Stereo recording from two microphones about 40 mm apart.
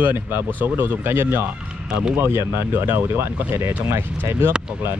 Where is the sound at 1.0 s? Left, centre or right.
Right.